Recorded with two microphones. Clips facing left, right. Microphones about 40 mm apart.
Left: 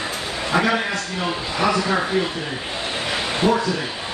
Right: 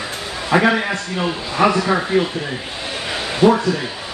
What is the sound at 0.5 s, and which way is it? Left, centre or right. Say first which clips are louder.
Speech: right 4 dB; right.